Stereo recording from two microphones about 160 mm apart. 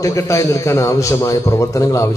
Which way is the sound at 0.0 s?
20° left (ahead or behind).